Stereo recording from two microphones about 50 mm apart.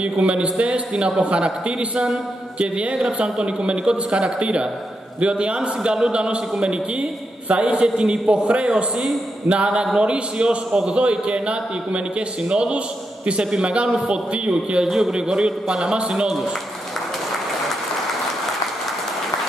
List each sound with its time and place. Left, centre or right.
0.0 s a man's voice: right
14.9 s a man's voice: centre